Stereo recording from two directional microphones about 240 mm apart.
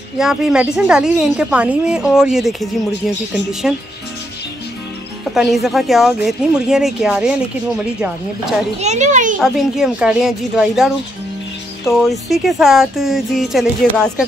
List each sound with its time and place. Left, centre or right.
0.2 s speech: centre
5.3 s speech: centre
8.8 s a child's voice: right
9.4 s speech: centre
12.0 s speech: centre